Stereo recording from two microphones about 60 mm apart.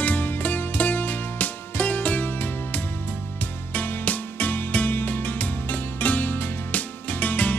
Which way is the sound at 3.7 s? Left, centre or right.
Left.